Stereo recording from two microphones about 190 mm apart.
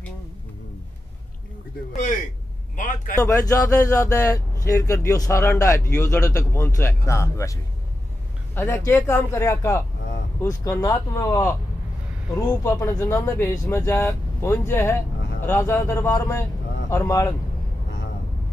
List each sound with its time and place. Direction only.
2.7 s a man's voice: 45° left (ahead or behind)
3.2 s speech: 15° left (ahead or behind)
8.5 s speech: 15° left (ahead or behind)